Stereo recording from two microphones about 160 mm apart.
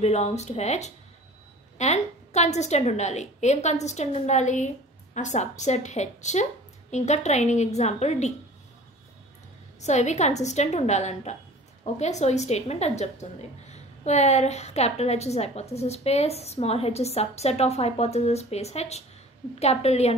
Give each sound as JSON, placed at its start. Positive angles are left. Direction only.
{"t": 0.0, "sound": "a woman's voice", "side_deg": 45}
{"t": 9.8, "sound": "a woman's voice", "side_deg": 45}